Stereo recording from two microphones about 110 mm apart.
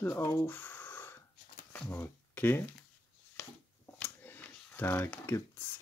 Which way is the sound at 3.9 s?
15° left (ahead or behind).